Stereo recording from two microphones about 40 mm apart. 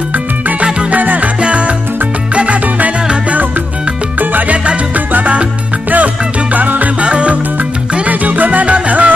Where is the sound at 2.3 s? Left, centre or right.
Right.